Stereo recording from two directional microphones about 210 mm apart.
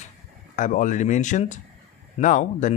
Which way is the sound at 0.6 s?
35° left (ahead or behind).